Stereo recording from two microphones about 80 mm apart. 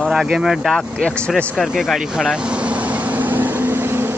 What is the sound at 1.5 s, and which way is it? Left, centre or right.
Vehicle, centre.